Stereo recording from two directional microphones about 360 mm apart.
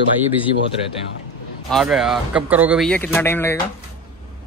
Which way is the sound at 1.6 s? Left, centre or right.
Centre.